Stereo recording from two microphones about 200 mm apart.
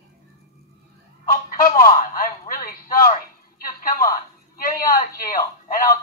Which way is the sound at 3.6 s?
45° left (ahead or behind).